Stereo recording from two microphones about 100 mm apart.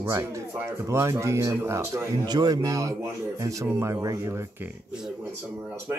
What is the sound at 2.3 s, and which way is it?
Speech, 40° right (ahead or behind).